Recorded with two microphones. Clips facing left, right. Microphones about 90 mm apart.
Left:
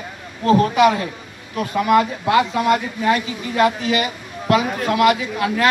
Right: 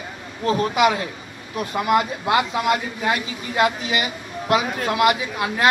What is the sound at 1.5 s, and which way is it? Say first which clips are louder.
A man's voice: left 4 dB; 20° right (ahead or behind).